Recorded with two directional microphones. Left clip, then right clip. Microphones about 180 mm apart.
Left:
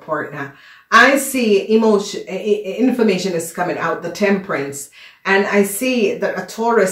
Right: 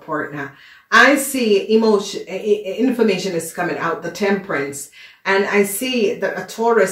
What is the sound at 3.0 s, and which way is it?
Speech, 25° left (ahead or behind).